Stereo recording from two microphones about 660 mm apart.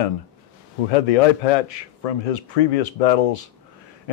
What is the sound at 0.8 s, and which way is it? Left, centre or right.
Speech, left.